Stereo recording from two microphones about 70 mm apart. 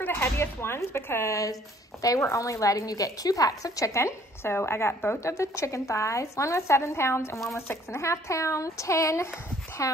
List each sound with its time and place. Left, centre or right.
0.0 s speech: left